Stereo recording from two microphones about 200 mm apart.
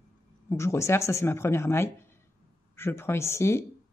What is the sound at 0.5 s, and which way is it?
Speech, 15° left (ahead or behind).